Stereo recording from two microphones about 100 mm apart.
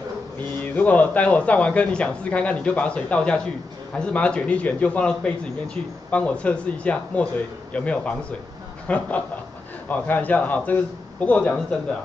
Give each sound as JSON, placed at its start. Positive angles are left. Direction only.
{"t": 0.7, "sound": "speech", "side_deg": 15}